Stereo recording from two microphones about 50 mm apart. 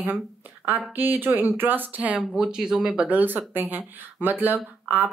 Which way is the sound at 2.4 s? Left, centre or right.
Centre.